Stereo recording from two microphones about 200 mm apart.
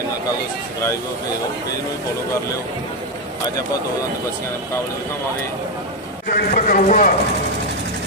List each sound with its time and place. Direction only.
6.2 s a man's voice: 45° left (ahead or behind)